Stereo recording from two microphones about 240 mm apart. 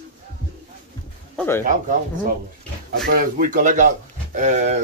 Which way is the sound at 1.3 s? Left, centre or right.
Centre.